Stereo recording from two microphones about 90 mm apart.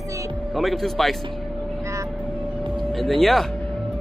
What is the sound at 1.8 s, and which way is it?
Vehicle, 35° right (ahead or behind).